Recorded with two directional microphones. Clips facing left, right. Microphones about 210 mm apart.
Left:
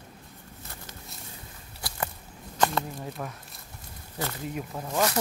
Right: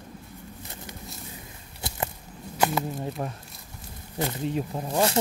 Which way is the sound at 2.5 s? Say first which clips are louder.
Right 1 dB; 10° right (ahead or behind).